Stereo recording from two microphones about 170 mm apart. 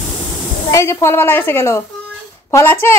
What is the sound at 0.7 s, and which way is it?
A woman's voice, 15° left (ahead or behind).